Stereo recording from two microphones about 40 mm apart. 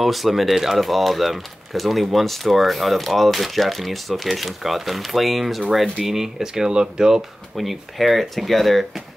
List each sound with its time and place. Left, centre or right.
0.0 s speech: centre
7.5 s speech: centre